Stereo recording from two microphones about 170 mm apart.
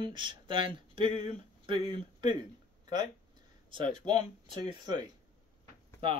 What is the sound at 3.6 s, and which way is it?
A man's voice, 30° right (ahead or behind).